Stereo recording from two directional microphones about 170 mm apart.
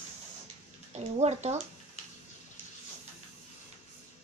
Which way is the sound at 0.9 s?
40° right (ahead or behind).